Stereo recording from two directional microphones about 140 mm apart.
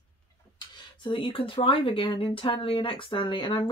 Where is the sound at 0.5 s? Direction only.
35° left (ahead or behind).